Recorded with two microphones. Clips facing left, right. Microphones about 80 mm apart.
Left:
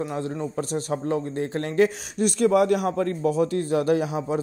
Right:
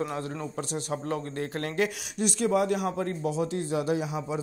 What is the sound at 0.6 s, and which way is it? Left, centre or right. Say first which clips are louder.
Speech: left 5 dB; left.